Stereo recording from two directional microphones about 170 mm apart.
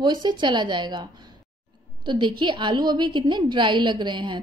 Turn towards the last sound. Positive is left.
turn(degrees=-25)  # may be behind; listen again after turning